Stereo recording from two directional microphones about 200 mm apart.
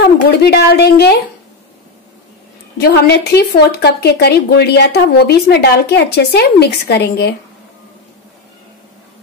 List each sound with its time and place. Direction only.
0.0 s a woman's voice: 55° left (ahead or behind)
2.8 s a woman's voice: 55° left (ahead or behind)